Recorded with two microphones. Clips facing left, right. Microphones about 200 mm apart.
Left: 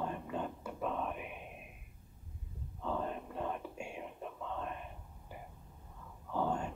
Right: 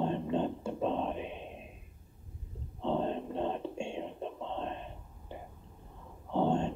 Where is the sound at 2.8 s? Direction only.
25° right (ahead or behind).